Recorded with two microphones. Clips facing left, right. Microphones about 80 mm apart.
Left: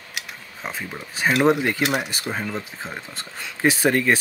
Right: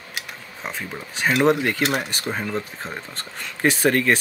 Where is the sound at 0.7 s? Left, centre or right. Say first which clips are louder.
Even; centre.